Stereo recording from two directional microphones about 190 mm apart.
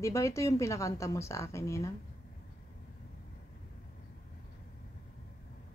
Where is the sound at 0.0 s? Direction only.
15° left (ahead or behind).